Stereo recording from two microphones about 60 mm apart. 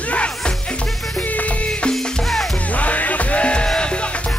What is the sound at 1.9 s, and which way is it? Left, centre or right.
Music, centre.